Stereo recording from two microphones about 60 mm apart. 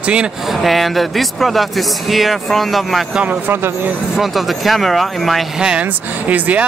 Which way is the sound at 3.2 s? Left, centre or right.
Right.